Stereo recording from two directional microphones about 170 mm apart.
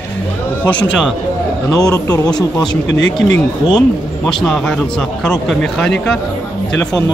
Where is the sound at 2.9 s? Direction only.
90° left.